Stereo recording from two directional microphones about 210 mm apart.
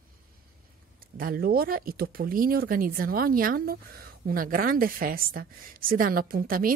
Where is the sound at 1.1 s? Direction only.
45° right (ahead or behind).